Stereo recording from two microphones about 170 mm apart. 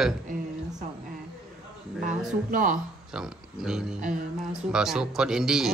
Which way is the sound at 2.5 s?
50° right (ahead or behind).